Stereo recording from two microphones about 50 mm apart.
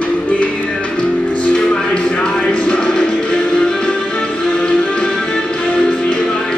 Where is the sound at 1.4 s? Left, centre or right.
Centre.